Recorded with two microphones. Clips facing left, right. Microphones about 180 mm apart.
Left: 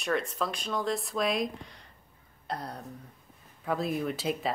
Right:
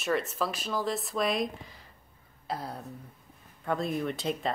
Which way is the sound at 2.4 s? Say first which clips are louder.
Right 1 dB; 5° right (ahead or behind).